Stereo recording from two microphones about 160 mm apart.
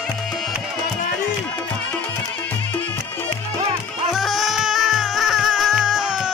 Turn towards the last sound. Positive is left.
turn(degrees=-5)  # may be behind; listen again after turning